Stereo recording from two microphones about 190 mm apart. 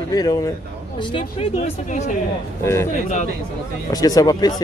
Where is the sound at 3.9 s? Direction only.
20° left (ahead or behind).